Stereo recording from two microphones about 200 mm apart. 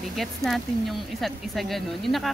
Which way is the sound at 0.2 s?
Centre (ahead or behind).